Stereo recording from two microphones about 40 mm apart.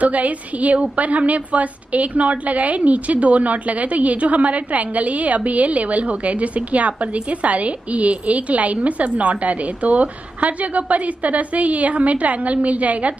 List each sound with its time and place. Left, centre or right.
0.0 s a woman's voice: right